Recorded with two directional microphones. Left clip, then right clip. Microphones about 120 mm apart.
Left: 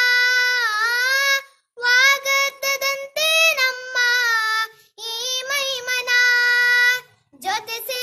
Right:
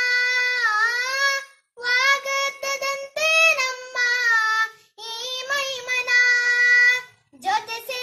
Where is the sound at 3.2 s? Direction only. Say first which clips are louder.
Left 1 dB; 45° left (ahead or behind).